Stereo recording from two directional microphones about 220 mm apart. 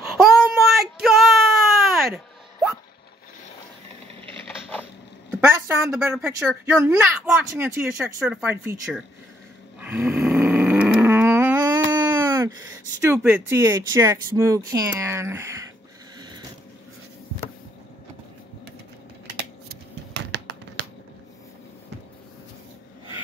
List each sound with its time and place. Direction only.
0.2 s a sound: centre (ahead or behind)
5.9 s speech: 5° right (ahead or behind)
9.8 s snoring: 10° right (ahead or behind)
11.9 s speech: 15° right (ahead or behind)
16.2 s a sound: 20° right (ahead or behind)
19.7 s scissors: 50° right (ahead or behind)